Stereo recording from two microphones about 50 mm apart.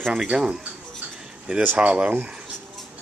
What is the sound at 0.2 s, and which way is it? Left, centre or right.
Speech, centre.